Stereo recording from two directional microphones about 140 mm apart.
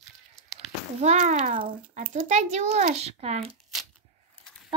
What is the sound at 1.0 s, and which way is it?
A woman's voice, 55° right (ahead or behind).